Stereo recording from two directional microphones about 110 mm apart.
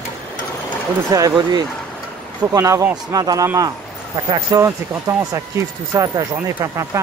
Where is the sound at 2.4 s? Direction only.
35° right (ahead or behind).